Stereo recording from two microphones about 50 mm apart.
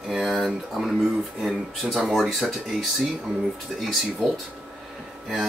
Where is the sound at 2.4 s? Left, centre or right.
Centre.